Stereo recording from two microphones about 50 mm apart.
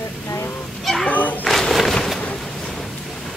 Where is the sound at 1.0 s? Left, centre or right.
Left.